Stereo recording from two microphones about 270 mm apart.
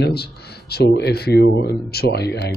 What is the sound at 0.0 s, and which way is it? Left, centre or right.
Speech, left.